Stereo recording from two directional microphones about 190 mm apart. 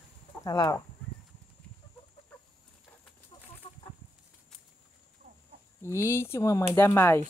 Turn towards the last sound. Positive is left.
turn(degrees=10)  # may be behind; listen again after turning